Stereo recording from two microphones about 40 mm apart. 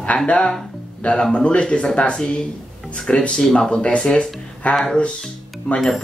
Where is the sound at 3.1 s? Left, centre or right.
Centre; by 4.8 s left.